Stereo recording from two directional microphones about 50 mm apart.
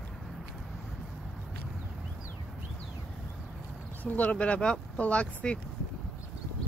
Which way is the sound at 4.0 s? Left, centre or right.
Left.